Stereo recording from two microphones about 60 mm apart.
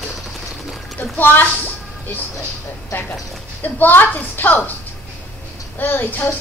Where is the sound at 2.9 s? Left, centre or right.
Left.